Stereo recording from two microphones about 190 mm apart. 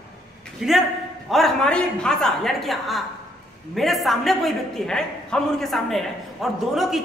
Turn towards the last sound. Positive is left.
turn(degrees=0)  # may be behind; listen again after turning